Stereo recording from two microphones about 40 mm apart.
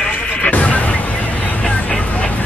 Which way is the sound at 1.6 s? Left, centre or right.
Left.